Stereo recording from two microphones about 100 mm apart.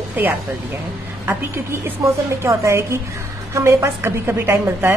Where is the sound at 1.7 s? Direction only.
25° right (ahead or behind).